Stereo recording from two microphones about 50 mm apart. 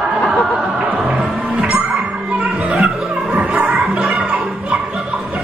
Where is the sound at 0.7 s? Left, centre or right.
Centre; by 3.8 s right.